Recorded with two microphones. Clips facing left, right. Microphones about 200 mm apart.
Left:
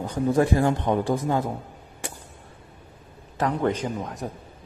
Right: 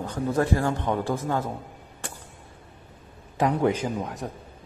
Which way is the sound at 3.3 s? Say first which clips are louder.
Right 1 dB; 10° right (ahead or behind).